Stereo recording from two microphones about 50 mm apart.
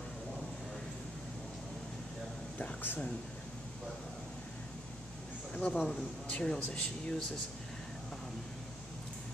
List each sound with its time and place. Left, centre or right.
2.6 s a sound: left
5.5 s a man's voice: left
5.9 s speech: centre